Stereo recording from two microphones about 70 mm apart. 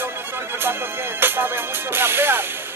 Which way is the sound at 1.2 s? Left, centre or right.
Right.